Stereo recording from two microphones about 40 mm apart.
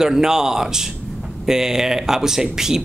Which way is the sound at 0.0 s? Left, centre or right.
Centre.